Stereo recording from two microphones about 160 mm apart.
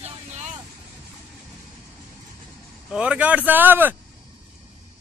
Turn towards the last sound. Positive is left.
turn(degrees=-10)  # may be behind; listen again after turning